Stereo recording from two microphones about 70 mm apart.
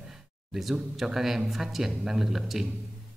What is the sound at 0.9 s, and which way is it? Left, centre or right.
Speech, centre.